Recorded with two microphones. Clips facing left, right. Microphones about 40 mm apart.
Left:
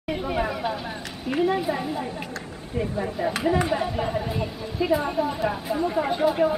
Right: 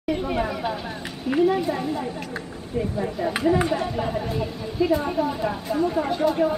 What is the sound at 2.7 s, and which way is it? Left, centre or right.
Speech, left.